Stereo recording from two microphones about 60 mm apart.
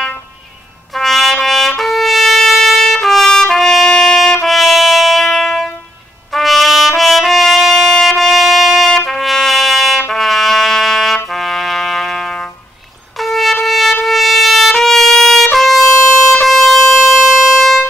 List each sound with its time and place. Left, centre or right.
0.9 s trumpet: centre